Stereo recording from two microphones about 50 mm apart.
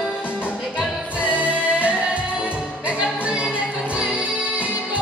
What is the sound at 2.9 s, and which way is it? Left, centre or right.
Music, right.